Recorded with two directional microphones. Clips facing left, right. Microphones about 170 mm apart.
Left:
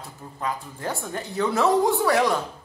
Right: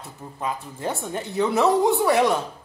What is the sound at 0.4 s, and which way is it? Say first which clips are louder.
A woman's voice: right 1 dB; 20° right (ahead or behind).